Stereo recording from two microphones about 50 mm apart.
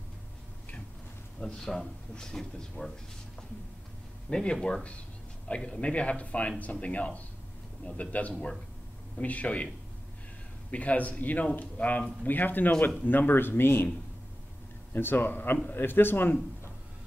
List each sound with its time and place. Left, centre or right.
1.4 s speech: centre
4.3 s speech: centre
10.7 s a man's voice: left
14.9 s speech: left